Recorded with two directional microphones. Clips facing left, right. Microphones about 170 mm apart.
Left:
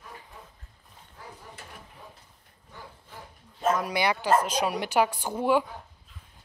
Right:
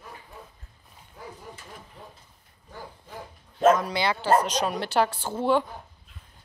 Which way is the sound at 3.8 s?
15° left (ahead or behind).